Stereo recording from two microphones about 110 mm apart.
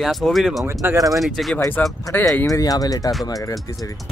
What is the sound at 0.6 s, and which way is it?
Speech, 25° right (ahead or behind).